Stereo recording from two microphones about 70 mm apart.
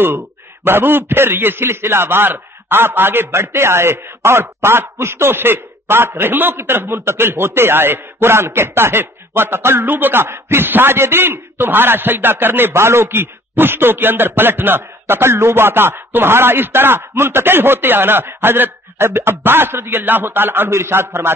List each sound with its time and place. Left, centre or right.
0.7 s a man's voice: right